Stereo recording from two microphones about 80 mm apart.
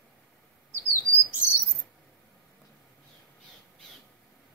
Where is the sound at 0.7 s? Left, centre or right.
Right.